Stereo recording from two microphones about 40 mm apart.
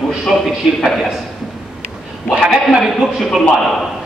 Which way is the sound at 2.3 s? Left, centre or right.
Centre.